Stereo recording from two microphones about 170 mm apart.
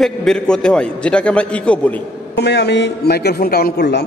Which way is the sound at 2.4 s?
85° left.